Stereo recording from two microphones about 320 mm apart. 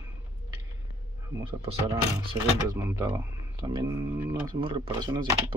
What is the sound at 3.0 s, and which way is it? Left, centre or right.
Speech, centre.